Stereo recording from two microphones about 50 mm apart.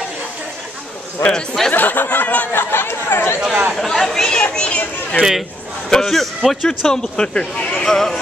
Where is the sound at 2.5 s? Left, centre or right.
Left.